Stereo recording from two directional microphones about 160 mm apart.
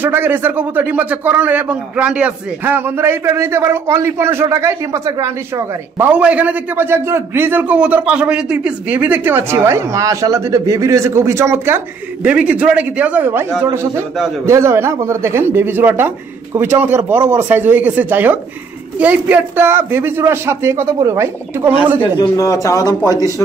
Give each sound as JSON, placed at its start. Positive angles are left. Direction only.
{"t": 0.0, "sound": "a man's voice", "side_deg": -15}
{"t": 22.2, "sound": "a man's voice", "side_deg": 20}